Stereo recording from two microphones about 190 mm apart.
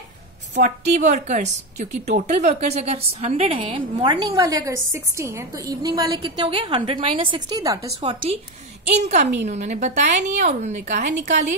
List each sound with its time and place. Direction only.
0.6 s a woman's voice: 40° right (ahead or behind)